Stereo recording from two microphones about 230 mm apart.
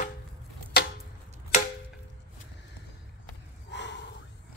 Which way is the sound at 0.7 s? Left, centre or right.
Left.